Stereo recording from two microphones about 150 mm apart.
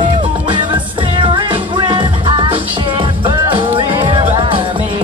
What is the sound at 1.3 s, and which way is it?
Music, 35° right (ahead or behind).